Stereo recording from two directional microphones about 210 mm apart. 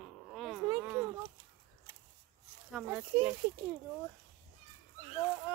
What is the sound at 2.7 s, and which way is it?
Speech, 5° right (ahead or behind).